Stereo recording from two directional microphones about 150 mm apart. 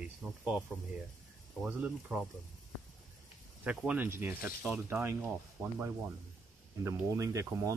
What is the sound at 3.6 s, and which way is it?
Speech, 10° right (ahead or behind).